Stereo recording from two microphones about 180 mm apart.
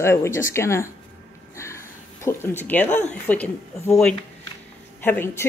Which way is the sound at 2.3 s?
15° left (ahead or behind).